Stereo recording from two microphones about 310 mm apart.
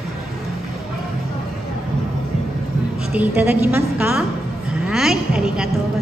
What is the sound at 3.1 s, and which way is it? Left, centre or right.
A woman's voice, centre.